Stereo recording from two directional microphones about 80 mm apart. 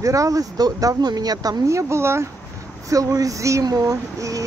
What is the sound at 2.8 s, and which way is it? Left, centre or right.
Speech, right.